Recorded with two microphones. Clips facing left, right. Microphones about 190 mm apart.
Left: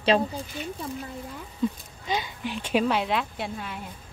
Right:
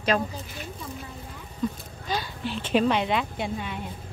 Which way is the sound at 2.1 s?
15° left (ahead or behind).